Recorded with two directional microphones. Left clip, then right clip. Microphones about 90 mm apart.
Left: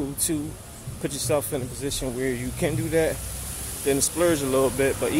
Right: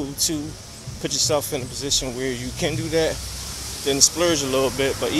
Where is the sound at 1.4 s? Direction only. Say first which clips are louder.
Right 2 dB; 35° left (ahead or behind).